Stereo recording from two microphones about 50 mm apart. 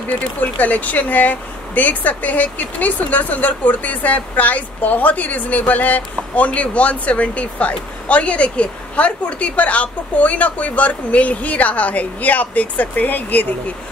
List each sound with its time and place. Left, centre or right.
0.1 s speech: left